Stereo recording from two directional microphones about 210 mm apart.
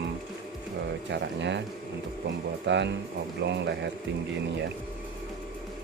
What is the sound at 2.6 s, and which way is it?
Speech, 55° right (ahead or behind).